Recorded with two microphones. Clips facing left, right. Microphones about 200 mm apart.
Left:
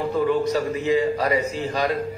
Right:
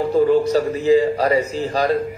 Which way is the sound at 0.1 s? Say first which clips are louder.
Right 6 dB; 35° right (ahead or behind).